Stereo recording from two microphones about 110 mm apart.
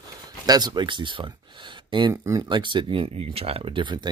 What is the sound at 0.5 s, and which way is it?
Speech, 40° right (ahead or behind).